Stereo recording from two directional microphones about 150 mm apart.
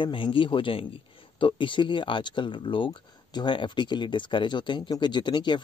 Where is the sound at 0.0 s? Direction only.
35° left (ahead or behind).